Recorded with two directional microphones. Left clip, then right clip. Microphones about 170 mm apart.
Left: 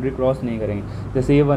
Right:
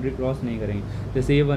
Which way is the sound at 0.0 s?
20° left (ahead or behind).